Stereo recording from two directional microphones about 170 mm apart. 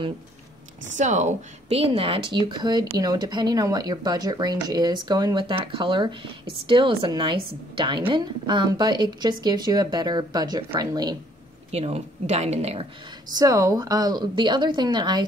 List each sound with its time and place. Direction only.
0.9 s a woman's voice: 45° right (ahead or behind); by 11.1 s 25° right (ahead or behind)
11.7 s a woman's voice: 40° right (ahead or behind)
13.3 s speech: 20° right (ahead or behind)